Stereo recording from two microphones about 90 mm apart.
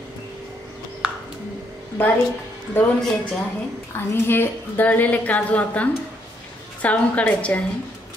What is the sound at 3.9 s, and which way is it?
A woman's voice, 25° left (ahead or behind).